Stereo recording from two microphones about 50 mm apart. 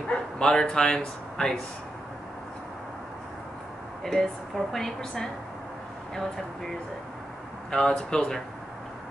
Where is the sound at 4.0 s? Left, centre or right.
Centre.